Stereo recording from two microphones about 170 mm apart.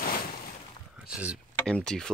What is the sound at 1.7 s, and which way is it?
Speech, 5° left (ahead or behind).